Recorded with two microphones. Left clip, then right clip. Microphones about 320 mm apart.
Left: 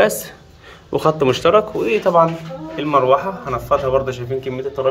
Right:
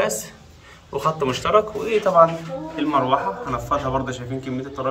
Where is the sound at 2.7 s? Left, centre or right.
Left.